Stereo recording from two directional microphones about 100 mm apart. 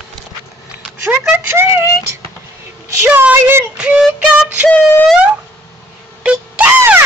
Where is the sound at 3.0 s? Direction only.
15° right (ahead or behind).